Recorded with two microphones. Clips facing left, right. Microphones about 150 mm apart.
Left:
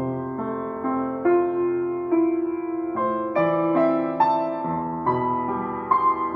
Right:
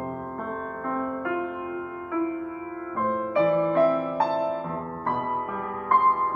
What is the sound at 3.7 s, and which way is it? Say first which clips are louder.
Music: left 2 dB; 20° left (ahead or behind).